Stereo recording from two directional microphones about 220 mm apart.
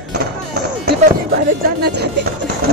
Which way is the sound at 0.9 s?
45° right (ahead or behind).